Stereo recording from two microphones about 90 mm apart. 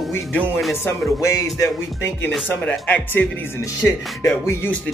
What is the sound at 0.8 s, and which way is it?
Speech, 35° left (ahead or behind).